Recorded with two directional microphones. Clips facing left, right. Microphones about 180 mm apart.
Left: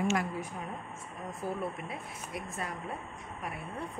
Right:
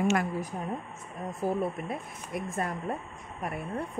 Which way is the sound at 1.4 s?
45° right (ahead or behind).